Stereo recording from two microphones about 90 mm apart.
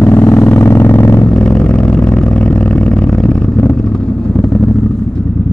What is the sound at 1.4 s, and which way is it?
Vehicle, 10° left (ahead or behind).